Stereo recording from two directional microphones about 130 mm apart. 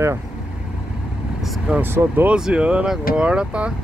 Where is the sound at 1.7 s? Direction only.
10° right (ahead or behind).